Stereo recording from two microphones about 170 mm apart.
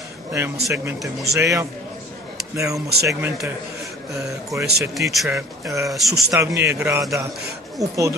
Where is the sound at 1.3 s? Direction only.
20° right (ahead or behind).